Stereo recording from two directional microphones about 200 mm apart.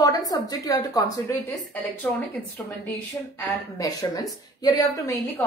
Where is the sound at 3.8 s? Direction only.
15° left (ahead or behind).